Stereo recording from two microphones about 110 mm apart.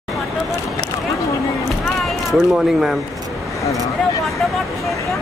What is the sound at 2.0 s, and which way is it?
Speech, centre (ahead or behind).